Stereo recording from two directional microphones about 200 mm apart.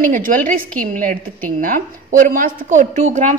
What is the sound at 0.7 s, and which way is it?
A woman's voice, 40° right (ahead or behind).